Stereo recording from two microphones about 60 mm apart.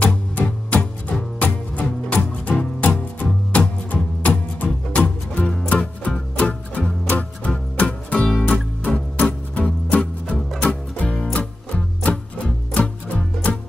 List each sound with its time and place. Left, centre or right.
0.4 s music: left
8.3 s music: centre
9.6 s music: left